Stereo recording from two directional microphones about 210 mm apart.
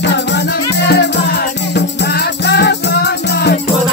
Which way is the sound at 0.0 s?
55° left (ahead or behind).